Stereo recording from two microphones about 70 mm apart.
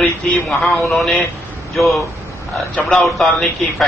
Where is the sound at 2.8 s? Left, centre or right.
Centre.